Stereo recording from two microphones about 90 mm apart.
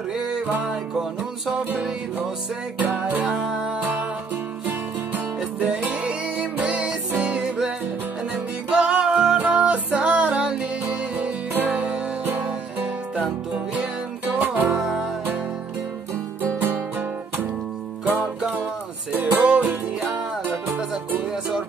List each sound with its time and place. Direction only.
0.1 s music: 5° right (ahead or behind)
1.5 s music: 15° right (ahead or behind)
5.4 s music: 15° right (ahead or behind)
14.8 s music: 5° right (ahead or behind)
16.4 s music: 25° right (ahead or behind)
18.0 s music: 20° right (ahead or behind)
21.3 s music: 10° right (ahead or behind)